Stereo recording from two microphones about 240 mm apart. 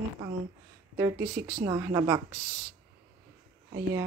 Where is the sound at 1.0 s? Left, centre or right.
Centre.